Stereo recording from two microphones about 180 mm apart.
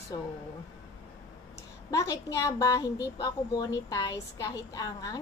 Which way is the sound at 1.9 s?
20° left (ahead or behind).